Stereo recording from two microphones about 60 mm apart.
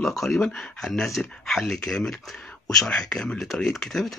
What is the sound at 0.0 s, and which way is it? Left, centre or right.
Speech, centre.